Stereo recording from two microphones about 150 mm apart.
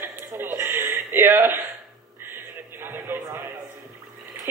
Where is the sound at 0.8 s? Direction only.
15° right (ahead or behind).